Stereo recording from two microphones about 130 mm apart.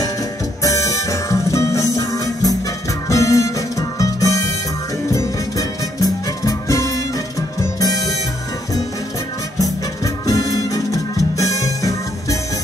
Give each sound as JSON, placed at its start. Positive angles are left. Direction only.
{"t": 0.6, "sound": "music", "side_deg": 25}
{"t": 9.6, "sound": "music", "side_deg": 25}